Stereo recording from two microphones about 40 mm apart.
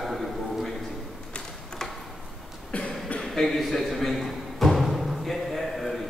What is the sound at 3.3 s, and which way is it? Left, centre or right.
Timpani, centre.